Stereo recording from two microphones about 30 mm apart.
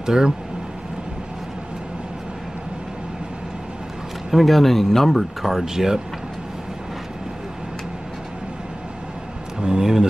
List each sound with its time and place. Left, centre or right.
0.0 s speech: right
4.3 s speech: centre
5.4 s speech: centre
9.6 s a sound: right